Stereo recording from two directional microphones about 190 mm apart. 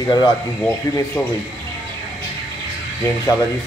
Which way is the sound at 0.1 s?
20° left (ahead or behind).